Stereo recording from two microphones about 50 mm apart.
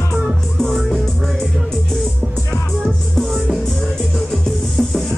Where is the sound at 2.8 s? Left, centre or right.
Centre.